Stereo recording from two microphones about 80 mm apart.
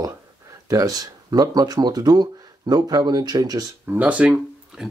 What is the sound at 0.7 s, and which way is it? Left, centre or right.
Speech, right.